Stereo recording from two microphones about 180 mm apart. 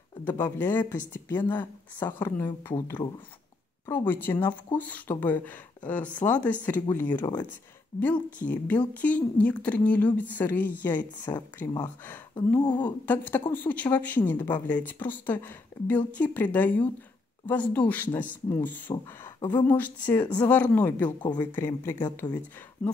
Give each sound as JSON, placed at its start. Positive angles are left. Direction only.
{"t": 0.4, "sound": "speech", "side_deg": 10}
{"t": 3.8, "sound": "speech", "side_deg": 10}
{"t": 12.5, "sound": "speech", "side_deg": 20}
{"t": 12.8, "sound": "speech", "side_deg": 10}
{"t": 21.2, "sound": "speech", "side_deg": 25}
{"t": 21.5, "sound": "speech", "side_deg": 15}
{"t": 22.8, "sound": "speech", "side_deg": 5}